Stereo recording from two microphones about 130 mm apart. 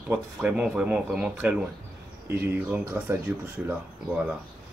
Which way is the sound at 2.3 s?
20° right (ahead or behind).